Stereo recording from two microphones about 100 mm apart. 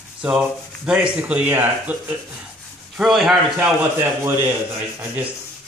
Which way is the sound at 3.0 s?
Centre (ahead or behind).